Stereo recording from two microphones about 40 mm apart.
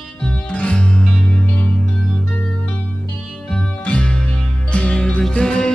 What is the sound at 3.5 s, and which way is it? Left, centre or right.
Music, left.